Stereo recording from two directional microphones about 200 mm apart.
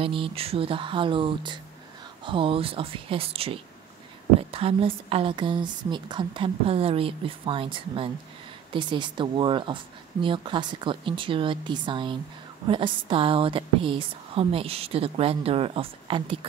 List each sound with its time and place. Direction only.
0.0 s a woman's voice: 25° right (ahead or behind)